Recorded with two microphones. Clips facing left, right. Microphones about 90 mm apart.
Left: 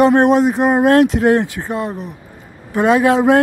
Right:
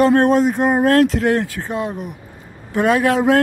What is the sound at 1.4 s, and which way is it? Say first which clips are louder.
Speech: left 2 dB; 15° left (ahead or behind).